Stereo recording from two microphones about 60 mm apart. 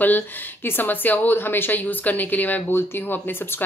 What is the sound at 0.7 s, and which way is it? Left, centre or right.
A woman's voice, left.